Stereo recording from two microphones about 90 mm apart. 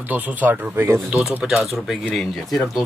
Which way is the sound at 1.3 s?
10° right (ahead or behind).